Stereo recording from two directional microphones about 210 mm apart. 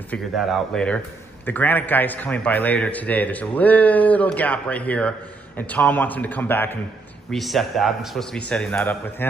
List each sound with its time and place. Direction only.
0.1 s a man's voice: centre (ahead or behind)